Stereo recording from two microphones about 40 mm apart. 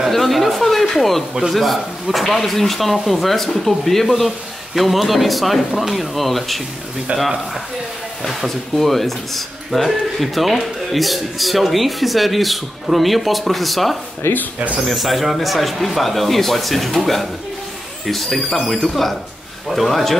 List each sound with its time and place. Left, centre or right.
0.1 s a sound: centre
1.5 s a man's voice: centre
14.2 s speech: left
14.8 s a man's voice: centre